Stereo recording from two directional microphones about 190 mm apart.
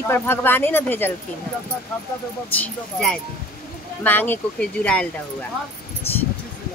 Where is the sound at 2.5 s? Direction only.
10° left (ahead or behind).